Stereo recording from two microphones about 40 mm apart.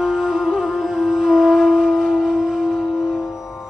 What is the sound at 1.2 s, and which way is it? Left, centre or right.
Music, centre.